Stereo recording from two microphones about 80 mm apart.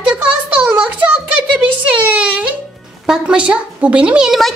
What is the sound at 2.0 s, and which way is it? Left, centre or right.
A child's voice, centre.